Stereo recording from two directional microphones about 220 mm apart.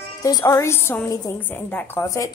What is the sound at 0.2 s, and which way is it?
A woman's voice, 15° left (ahead or behind).